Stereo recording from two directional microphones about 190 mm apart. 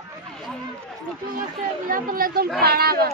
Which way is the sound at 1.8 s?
45° right (ahead or behind).